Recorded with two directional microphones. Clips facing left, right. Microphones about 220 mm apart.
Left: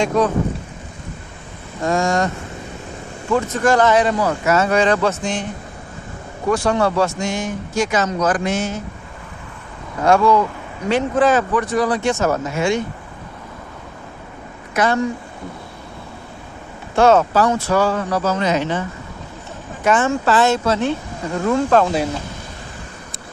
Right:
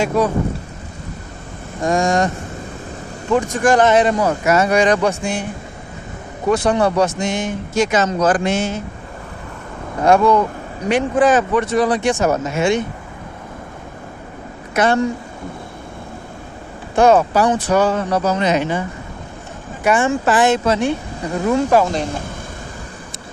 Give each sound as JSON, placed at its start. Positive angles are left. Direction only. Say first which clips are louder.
{"t": 0.0, "sound": "speech", "louder": "even", "side_deg": -5}
{"t": 1.8, "sound": "speech", "louder": "right 2 dB", "side_deg": -15}
{"t": 6.5, "sound": "speech", "louder": "right 2 dB", "side_deg": -20}
{"t": 10.0, "sound": "speech", "louder": "right 1 dB", "side_deg": -20}
{"t": 16.9, "sound": "speech", "louder": "right 1 dB", "side_deg": -15}